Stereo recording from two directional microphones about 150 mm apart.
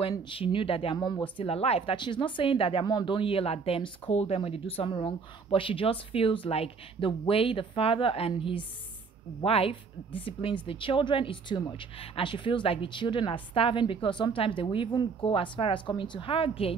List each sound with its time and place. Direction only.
0.1 s speech: 35° left (ahead or behind)
1.3 s speech: 40° left (ahead or behind)